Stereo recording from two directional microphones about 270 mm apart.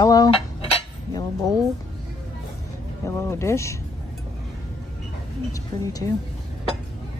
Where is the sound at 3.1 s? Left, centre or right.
Centre.